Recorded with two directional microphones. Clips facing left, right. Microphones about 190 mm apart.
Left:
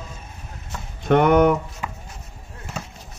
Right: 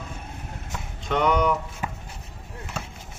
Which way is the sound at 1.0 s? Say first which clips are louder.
Left 7 dB; 55° left (ahead or behind).